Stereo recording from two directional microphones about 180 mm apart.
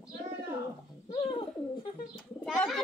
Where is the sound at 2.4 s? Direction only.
5° left (ahead or behind).